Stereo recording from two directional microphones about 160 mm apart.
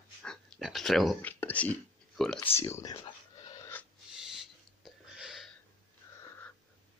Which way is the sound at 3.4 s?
20° left (ahead or behind).